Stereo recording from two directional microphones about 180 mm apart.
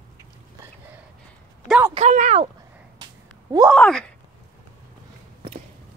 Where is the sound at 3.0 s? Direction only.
20° right (ahead or behind).